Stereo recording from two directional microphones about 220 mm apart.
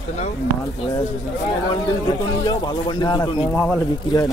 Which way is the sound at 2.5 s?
20° left (ahead or behind).